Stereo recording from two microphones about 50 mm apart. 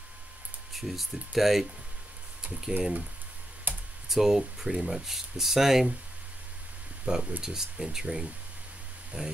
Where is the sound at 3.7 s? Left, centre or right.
Right.